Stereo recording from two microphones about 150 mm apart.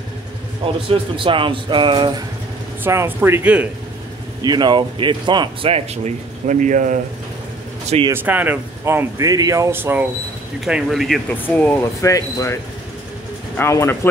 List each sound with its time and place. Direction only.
0.8 s speech: 35° right (ahead or behind)
2.8 s speech: 15° right (ahead or behind)
4.4 s speech: 30° right (ahead or behind); by 7.0 s 55° right (ahead or behind)
8.1 s speech: 10° right (ahead or behind)
10.6 s speech: centre (ahead or behind)
11.2 s speech: 10° left (ahead or behind)
13.6 s speech: 15° left (ahead or behind)